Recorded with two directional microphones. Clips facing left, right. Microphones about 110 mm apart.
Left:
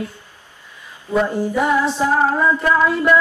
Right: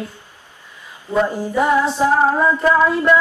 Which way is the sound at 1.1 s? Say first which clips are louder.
Even; 5° right (ahead or behind).